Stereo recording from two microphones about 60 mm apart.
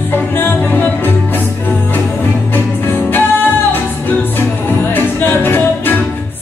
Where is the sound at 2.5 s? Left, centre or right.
Left.